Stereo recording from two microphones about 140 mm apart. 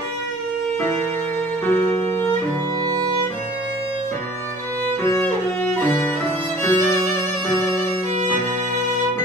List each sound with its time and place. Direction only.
1.7 s music: 20° left (ahead or behind)
5.0 s music: 20° left (ahead or behind)
6.6 s violin: 20° left (ahead or behind)